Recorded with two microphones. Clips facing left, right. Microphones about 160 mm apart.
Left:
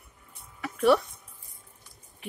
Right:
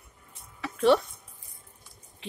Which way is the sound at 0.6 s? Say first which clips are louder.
Even; 30° right (ahead or behind).